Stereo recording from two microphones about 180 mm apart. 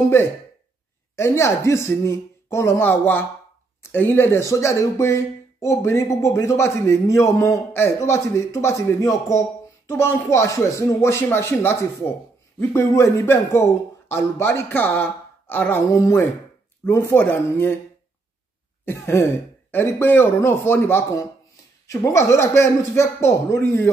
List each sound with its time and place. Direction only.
1.1 s speech: 15° left (ahead or behind)
18.9 s speech: 15° left (ahead or behind)